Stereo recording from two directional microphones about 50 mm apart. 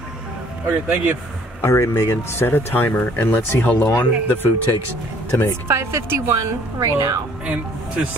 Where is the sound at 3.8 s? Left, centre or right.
Left.